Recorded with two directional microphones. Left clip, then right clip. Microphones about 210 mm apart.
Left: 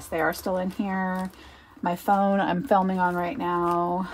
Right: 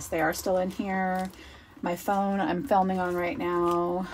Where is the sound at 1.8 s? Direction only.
25° left (ahead or behind).